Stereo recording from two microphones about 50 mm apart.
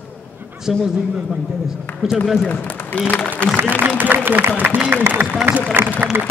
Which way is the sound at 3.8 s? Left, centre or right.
Right.